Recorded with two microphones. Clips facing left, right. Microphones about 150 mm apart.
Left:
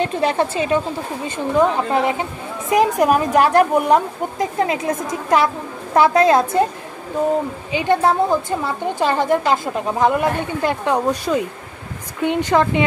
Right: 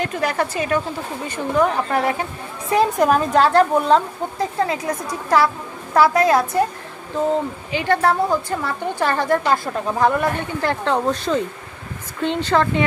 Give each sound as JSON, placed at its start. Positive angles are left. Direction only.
{"t": 0.0, "sound": "a woman's voice", "side_deg": 25}
{"t": 5.9, "sound": "a woman's voice", "side_deg": 20}
{"t": 7.7, "sound": "a woman's voice", "side_deg": 20}